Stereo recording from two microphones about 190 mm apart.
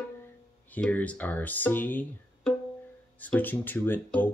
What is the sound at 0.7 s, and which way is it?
Speech, 10° left (ahead or behind).